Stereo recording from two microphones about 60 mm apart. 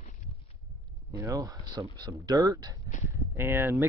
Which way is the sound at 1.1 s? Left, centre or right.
Right.